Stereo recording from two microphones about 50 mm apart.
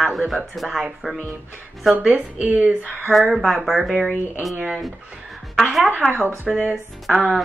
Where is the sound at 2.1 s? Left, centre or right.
Right.